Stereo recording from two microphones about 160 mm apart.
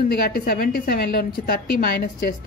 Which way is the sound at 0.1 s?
70° left (ahead or behind).